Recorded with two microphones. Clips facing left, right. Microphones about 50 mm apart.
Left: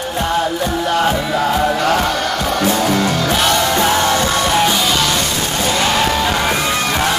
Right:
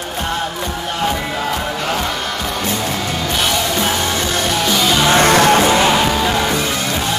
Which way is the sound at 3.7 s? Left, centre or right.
Left.